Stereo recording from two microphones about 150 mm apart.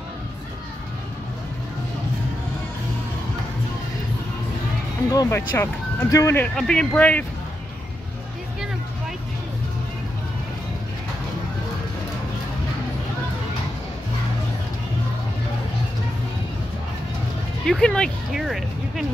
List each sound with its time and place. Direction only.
5.1 s speech: 20° left (ahead or behind)
6.5 s speech: 5° left (ahead or behind)
17.6 s a sound: 5° left (ahead or behind)